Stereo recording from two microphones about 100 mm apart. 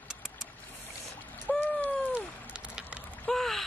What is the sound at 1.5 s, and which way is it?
Bird, 15° left (ahead or behind).